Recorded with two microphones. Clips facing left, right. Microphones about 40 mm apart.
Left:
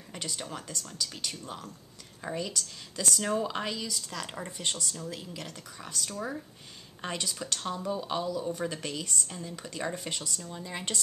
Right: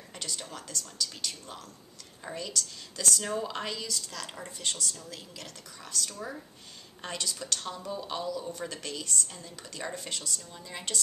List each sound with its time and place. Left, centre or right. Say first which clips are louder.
0.1 s speech: left 2 dB; centre
4.4 s speech: even; left